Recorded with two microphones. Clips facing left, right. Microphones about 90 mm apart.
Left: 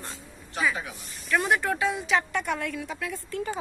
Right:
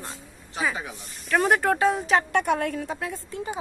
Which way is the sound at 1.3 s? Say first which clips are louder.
Right 3 dB; 45° right (ahead or behind).